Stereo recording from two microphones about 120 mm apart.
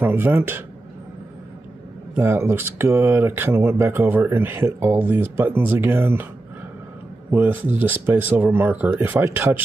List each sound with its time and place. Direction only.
0.0 s speech: 20° right (ahead or behind)
2.1 s speech: 20° right (ahead or behind)
7.2 s speech: 15° right (ahead or behind)